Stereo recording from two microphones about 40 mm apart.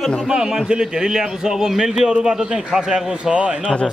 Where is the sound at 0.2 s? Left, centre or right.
Centre.